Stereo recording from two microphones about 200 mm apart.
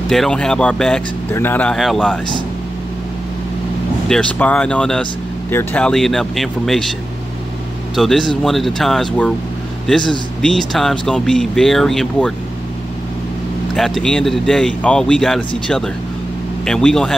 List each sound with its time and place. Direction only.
0.1 s speech: 5° left (ahead or behind)
4.1 s speech: 5° left (ahead or behind)
7.9 s speech: centre (ahead or behind)
13.7 s speech: centre (ahead or behind)